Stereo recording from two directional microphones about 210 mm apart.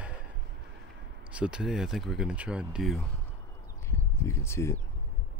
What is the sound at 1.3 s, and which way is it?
Speech, 5° right (ahead or behind).